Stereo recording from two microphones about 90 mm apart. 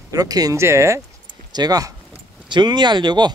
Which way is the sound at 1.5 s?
45° right (ahead or behind).